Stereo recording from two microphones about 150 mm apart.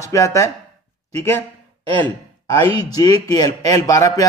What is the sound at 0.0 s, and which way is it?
Speech, 20° left (ahead or behind).